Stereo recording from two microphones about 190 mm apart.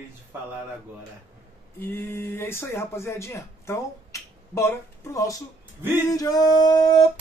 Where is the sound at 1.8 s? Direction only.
10° left (ahead or behind).